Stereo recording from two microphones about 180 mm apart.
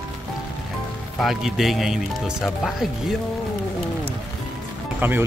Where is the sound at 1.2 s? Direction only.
Centre (ahead or behind).